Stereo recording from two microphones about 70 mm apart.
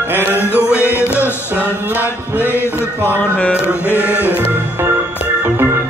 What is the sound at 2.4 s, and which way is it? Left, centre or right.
Music, left.